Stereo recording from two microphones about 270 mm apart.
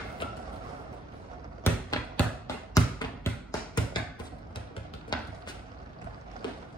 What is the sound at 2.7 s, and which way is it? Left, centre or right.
Tap, centre.